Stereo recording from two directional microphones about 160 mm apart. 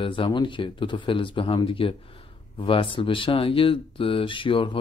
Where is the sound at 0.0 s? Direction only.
35° left (ahead or behind).